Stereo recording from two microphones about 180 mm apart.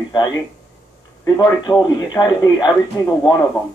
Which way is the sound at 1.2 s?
20° left (ahead or behind).